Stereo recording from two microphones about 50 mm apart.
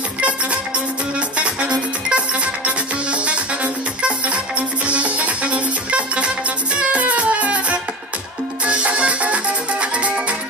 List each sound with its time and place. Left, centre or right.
2.0 s music: right
4.8 s music: right